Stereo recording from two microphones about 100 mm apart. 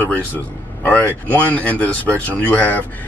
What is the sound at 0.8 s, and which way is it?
A man's voice, 15° left (ahead or behind).